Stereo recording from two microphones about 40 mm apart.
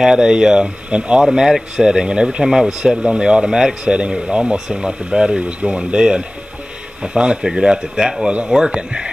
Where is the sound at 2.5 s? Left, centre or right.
Centre.